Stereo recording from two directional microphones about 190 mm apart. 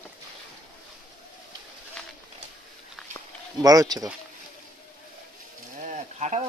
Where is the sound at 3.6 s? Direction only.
20° right (ahead or behind).